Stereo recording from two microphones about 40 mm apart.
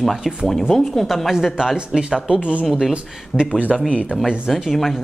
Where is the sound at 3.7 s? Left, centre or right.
Centre.